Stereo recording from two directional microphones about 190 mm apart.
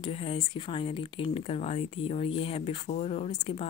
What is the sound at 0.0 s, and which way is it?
Speech, 30° left (ahead or behind).